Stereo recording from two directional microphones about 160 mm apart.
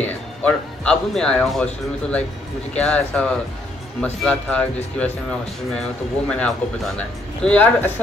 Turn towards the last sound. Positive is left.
turn(degrees=10)  # may be behind; listen again after turning